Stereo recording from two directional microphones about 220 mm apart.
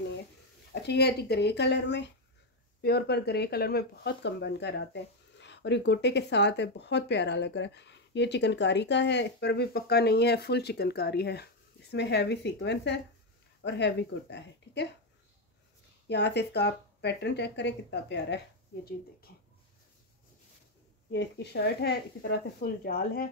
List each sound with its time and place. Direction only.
0.8 s speech: 50° left (ahead or behind)
16.1 s speech: 50° left (ahead or behind)
19.3 s whispering: 45° left (ahead or behind)
21.1 s speech: 50° left (ahead or behind)